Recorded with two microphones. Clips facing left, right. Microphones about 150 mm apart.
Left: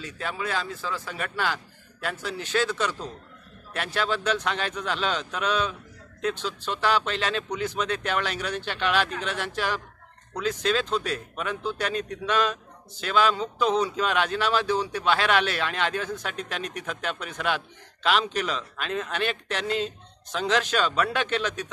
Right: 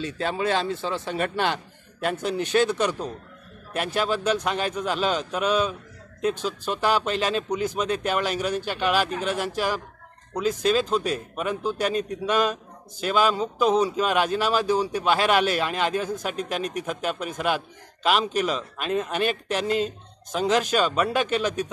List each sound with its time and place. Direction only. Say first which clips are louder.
0.0 s a man's voice: right 6 dB; 30° right (ahead or behind); by 21.6 s 10° right (ahead or behind)